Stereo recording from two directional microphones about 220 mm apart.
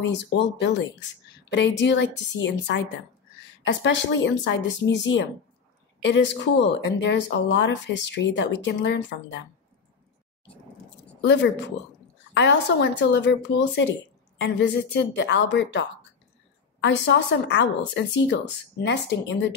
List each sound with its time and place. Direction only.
0.0 s speech: 55° left (ahead or behind)
12.4 s speech: 50° left (ahead or behind)